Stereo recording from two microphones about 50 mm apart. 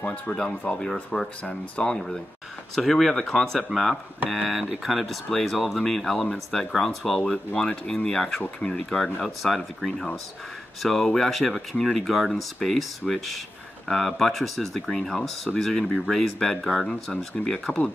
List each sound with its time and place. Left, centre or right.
0.3 s speech: centre
2.7 s speech: centre
3.7 s speech: centre